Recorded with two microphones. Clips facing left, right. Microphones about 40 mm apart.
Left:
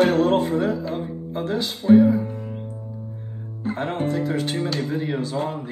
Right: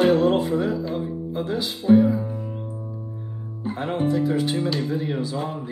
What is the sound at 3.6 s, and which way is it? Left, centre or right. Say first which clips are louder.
Speech: even; left.